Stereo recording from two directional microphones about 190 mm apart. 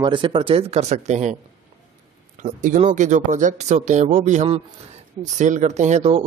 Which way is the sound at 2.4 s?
40° right (ahead or behind).